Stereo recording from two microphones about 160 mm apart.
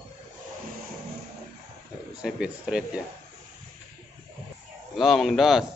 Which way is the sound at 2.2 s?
5° right (ahead or behind).